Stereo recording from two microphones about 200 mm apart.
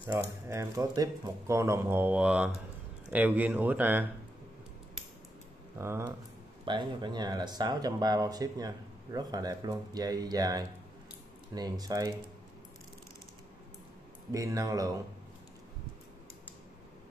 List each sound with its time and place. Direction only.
0.0 s speech: 10° right (ahead or behind)
5.8 s speech: 15° right (ahead or behind)
6.6 s speech: 25° right (ahead or behind)
14.3 s speech: 15° right (ahead or behind)